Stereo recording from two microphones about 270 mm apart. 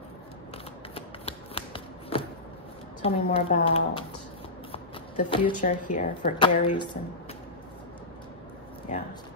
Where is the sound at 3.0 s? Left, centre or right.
Left.